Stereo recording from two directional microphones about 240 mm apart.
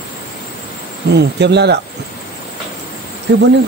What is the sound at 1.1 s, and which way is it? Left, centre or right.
Speech, right.